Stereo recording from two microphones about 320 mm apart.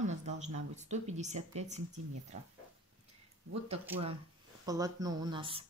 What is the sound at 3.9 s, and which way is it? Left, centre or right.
Speech, centre.